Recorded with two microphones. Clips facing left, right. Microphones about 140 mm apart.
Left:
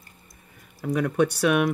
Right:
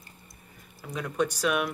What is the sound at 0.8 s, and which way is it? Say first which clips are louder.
Speech: left 7 dB; 60° left (ahead or behind).